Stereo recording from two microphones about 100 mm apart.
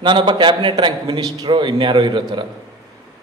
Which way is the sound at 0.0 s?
50° right (ahead or behind).